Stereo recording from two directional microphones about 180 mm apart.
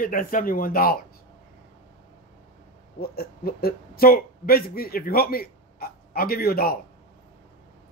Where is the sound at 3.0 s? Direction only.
55° left (ahead or behind).